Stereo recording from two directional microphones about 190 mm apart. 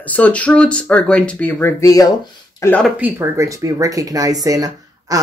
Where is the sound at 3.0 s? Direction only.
10° right (ahead or behind).